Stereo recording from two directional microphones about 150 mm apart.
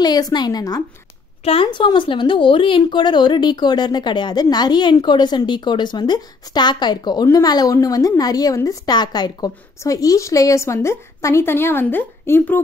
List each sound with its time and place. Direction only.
0.0 s a woman's voice: 25° left (ahead or behind)
1.4 s a woman's voice: 35° left (ahead or behind); by 12.5 s 15° left (ahead or behind)